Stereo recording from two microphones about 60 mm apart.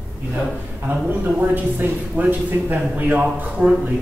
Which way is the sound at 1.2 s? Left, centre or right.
Right.